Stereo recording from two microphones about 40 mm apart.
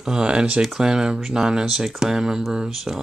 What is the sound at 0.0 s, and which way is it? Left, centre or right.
Speech, centre.